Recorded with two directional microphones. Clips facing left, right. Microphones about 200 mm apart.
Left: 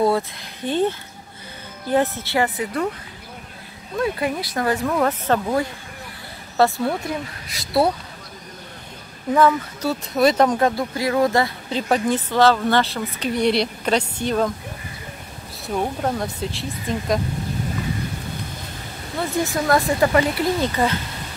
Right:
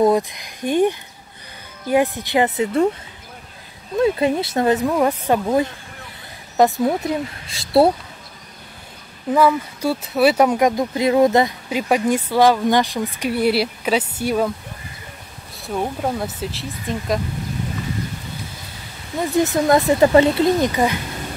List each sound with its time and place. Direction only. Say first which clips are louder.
0.0 s speech: right 3 dB; 15° right (ahead or behind)
4.0 s speech: right 6 dB; 25° right (ahead or behind)
9.3 s speech: right 1 dB; 10° right (ahead or behind)
15.6 s speech: even; 5° right (ahead or behind)
19.1 s speech: right 5 dB; 20° right (ahead or behind)